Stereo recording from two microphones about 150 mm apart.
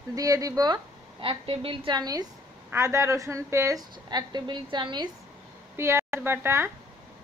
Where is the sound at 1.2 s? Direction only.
40° right (ahead or behind).